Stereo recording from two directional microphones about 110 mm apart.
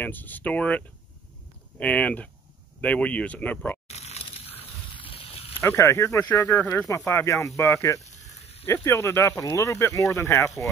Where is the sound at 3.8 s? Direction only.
75° left (ahead or behind).